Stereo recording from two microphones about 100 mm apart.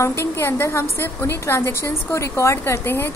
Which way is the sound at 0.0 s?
30° left (ahead or behind).